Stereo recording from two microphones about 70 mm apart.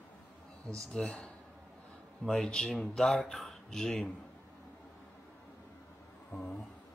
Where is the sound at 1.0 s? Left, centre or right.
Centre.